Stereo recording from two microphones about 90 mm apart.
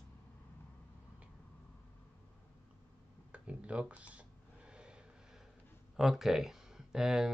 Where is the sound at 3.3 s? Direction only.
15° right (ahead or behind).